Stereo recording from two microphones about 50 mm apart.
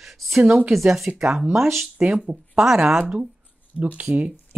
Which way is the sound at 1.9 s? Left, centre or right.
Right.